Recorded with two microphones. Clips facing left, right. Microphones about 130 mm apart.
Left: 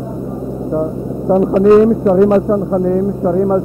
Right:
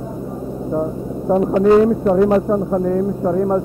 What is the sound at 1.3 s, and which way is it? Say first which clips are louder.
Speech: left 4 dB; 30° left (ahead or behind).